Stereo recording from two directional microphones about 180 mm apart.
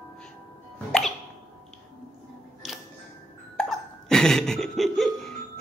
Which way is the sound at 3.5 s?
5° left (ahead or behind).